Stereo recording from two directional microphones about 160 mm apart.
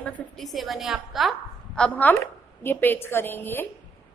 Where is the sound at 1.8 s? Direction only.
10° left (ahead or behind).